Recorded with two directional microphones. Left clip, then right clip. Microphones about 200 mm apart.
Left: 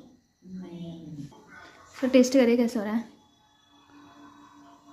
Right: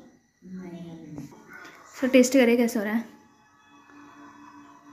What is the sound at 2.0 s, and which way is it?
A woman's voice, centre (ahead or behind).